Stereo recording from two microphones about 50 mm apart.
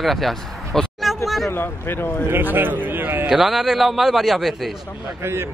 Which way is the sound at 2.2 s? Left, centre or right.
Right.